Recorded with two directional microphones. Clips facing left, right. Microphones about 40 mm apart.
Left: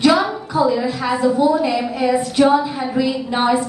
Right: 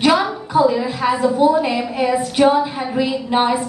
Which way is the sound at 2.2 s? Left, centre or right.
Right.